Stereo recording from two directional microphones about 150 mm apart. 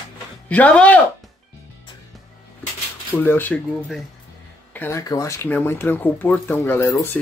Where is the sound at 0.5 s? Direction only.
10° left (ahead or behind).